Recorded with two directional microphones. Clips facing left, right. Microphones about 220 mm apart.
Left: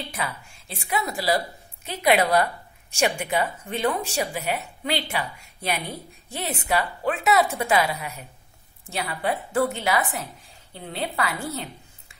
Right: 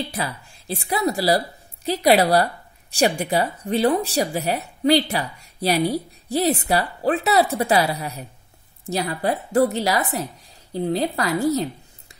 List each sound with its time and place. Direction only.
0.1 s a woman's voice: 35° right (ahead or behind)